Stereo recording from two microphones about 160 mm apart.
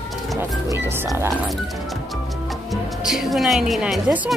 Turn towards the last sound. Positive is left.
turn(degrees=-5)  # may be behind; listen again after turning